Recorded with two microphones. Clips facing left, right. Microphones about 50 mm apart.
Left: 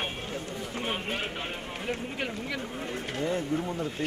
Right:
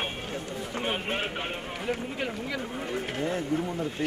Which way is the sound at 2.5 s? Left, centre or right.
Centre.